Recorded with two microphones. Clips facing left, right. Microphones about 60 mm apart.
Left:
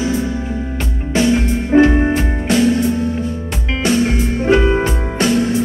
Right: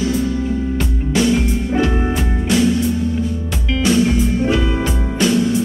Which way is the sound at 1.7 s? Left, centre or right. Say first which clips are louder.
Left 9 dB; left.